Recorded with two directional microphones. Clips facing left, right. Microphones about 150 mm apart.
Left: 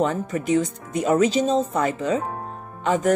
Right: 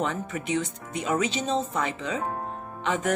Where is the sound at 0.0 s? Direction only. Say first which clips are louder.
Left 6 dB; 45° left (ahead or behind).